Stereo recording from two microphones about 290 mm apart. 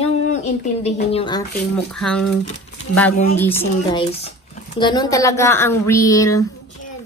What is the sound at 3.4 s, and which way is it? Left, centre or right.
A woman's voice, centre.